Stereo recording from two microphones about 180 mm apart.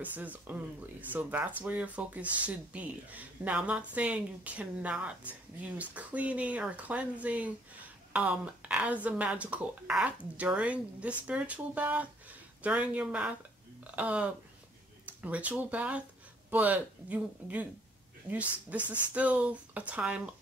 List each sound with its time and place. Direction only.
0.0 s speech: 10° right (ahead or behind)